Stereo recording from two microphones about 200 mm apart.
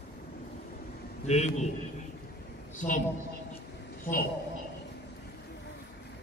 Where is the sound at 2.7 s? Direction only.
40° left (ahead or behind).